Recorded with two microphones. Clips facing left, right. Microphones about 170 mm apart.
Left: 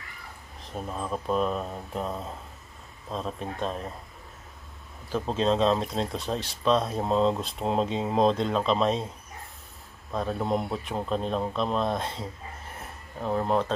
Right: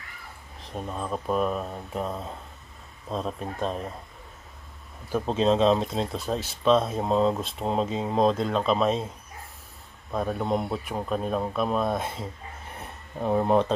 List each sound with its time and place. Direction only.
0.6 s speech: centre (ahead or behind)
5.2 s speech: centre (ahead or behind)
10.1 s speech: 5° right (ahead or behind)
13.2 s speech: 15° right (ahead or behind)